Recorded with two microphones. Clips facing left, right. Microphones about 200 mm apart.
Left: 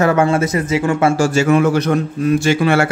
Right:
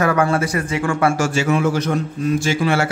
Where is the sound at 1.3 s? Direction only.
45° left (ahead or behind).